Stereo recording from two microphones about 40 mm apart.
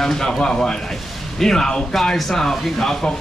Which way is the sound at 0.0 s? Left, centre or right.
Centre.